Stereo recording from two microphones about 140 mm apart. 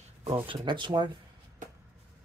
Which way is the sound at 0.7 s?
35° right (ahead or behind).